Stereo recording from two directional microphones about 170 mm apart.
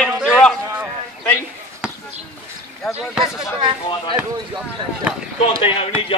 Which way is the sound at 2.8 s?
Centre (ahead or behind).